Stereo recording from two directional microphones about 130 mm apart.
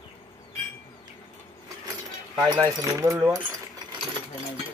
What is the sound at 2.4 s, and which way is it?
Speech, 30° right (ahead or behind).